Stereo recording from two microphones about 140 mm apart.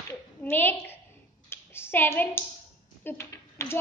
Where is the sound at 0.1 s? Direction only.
15° left (ahead or behind).